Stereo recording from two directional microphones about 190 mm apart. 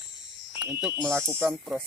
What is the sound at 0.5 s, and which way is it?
Speech, 10° right (ahead or behind).